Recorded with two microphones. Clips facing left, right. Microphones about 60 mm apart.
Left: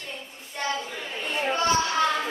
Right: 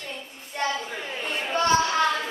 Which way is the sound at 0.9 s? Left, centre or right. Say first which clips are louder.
Right 1 dB; centre.